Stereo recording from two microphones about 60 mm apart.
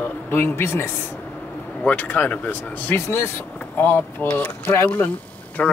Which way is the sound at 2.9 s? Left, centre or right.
Left.